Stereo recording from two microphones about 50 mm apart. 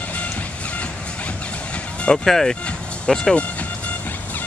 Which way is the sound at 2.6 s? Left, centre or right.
Centre.